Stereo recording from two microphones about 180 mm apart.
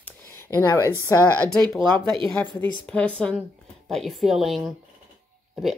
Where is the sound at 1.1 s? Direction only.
15° left (ahead or behind).